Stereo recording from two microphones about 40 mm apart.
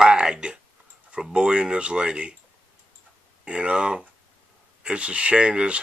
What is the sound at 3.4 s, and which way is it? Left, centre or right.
Speech, right.